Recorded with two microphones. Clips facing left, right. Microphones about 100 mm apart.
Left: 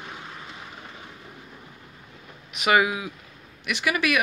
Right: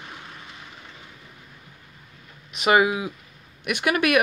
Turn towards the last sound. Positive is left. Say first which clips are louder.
# right 3 dB
turn(degrees=-50)  # may be behind; listen again after turning